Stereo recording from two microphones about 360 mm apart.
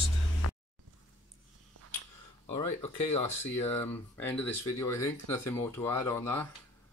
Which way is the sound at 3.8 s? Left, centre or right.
Centre.